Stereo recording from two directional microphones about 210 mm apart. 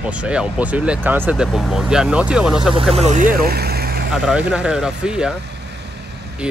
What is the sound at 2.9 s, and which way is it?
Speech, 35° right (ahead or behind).